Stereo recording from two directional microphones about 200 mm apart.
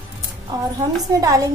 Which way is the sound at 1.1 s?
15° right (ahead or behind).